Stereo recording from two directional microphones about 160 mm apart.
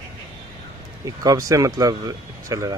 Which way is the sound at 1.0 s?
20° right (ahead or behind).